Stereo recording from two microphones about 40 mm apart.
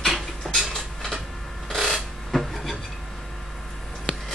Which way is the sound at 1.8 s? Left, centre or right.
Centre.